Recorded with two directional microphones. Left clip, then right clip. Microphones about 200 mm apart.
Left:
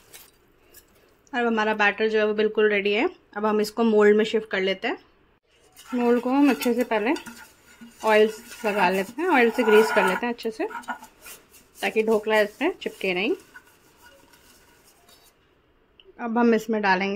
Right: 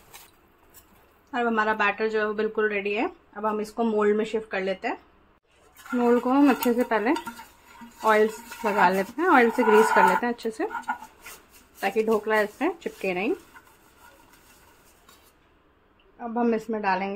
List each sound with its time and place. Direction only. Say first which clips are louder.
1.3 s a woman's voice: left 1 dB; 15° left (ahead or behind)
5.9 s speech: even; centre (ahead or behind)
16.2 s a woman's voice: left 4 dB; 25° left (ahead or behind)